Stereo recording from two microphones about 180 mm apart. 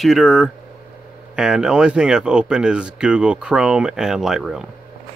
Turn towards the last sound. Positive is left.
turn(degrees=-5)  # may be behind; listen again after turning